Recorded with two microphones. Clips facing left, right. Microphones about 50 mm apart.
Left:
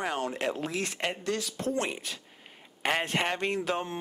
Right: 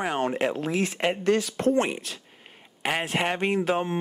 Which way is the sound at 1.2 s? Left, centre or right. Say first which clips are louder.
Right 9 dB; right.